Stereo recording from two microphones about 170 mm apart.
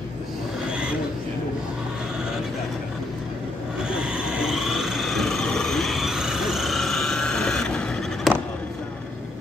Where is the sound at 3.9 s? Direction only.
5° right (ahead or behind).